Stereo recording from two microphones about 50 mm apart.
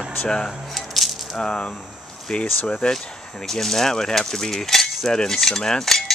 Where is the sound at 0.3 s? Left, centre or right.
Centre.